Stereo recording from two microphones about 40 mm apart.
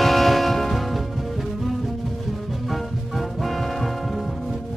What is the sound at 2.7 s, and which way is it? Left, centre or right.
Music, centre.